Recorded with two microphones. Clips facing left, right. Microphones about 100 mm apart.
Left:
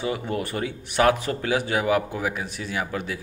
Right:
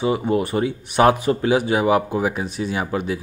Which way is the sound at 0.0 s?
20° right (ahead or behind).